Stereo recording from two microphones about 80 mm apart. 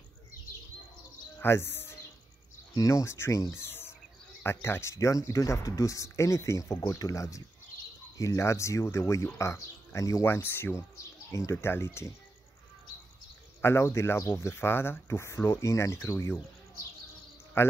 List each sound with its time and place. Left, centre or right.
1.4 s speech: left
2.7 s speech: left
13.6 s speech: left